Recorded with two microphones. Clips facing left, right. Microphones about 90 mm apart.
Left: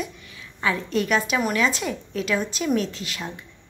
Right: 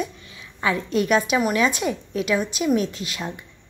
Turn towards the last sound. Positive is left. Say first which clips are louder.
# right 2 dB
turn(degrees=-20)  # may be behind; listen again after turning